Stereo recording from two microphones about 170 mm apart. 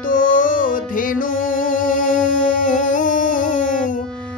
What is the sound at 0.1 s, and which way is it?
Music, 50° left (ahead or behind).